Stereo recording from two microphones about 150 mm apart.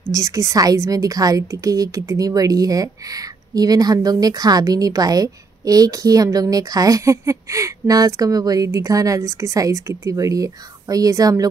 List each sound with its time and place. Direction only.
0.1 s a woman's voice: 20° right (ahead or behind)